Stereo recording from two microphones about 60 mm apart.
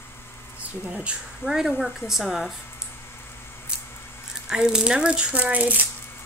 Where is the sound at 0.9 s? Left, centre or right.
Centre.